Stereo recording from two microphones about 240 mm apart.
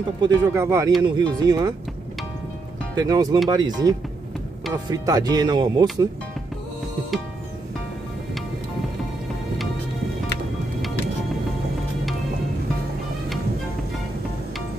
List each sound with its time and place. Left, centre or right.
0.2 s speech: centre
3.0 s speech: centre